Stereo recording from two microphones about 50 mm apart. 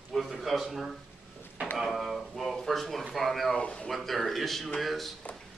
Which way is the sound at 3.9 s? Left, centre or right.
Centre.